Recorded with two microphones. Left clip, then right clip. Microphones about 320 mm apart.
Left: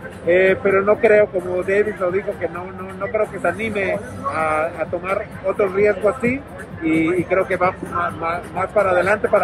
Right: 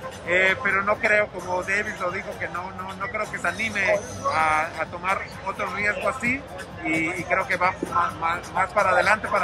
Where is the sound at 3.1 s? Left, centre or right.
Centre.